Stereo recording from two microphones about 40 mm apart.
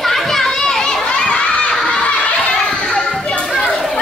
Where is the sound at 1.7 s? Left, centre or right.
Centre.